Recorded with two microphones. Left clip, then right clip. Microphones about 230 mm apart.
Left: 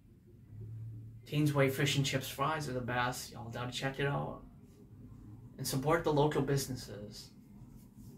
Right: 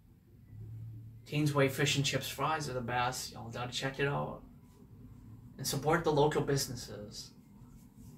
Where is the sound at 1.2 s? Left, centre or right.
Centre.